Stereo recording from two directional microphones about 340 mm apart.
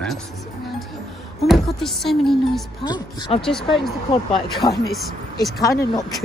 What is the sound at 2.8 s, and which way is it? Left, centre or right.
Music, centre.